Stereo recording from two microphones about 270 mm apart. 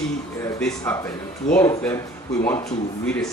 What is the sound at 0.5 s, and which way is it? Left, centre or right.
Speech, centre.